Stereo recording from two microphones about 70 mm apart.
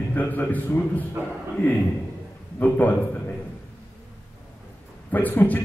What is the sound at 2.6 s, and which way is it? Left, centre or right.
Speech, left.